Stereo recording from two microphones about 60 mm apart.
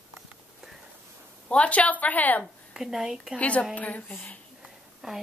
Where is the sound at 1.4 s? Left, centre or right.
Left.